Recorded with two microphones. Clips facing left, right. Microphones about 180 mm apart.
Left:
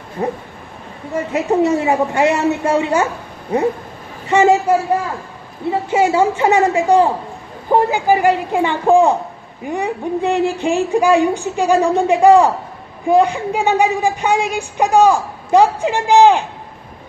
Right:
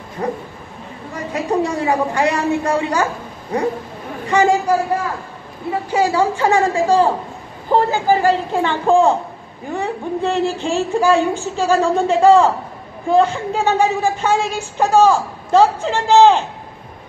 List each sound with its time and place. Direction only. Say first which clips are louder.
1.1 s a woman's voice: left 3 dB; 25° left (ahead or behind)
4.3 s a woman's voice: left 3 dB; 25° left (ahead or behind)